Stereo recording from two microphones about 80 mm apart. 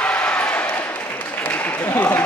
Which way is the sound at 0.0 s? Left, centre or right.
Centre.